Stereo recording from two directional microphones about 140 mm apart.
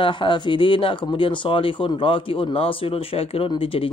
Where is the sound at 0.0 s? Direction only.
35° left (ahead or behind).